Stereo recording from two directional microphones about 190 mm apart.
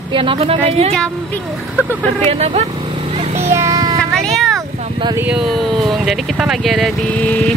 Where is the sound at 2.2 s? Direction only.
35° right (ahead or behind).